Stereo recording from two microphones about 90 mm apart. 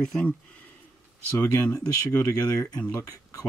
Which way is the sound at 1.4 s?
40° left (ahead or behind).